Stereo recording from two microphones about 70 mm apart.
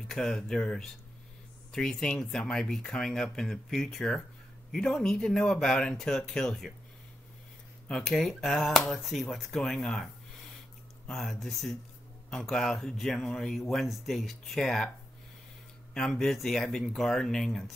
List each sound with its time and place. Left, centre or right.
0.1 s speech: centre
8.1 s speech: centre
15.9 s speech: centre